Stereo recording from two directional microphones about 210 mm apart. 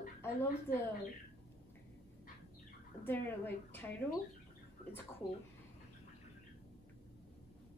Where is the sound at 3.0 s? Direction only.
10° left (ahead or behind).